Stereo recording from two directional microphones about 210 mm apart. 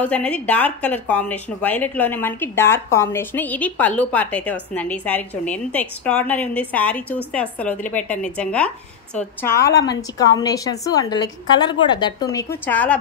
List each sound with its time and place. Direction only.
0.0 s a woman's voice: 5° left (ahead or behind)
8.4 s a woman's voice: 5° left (ahead or behind)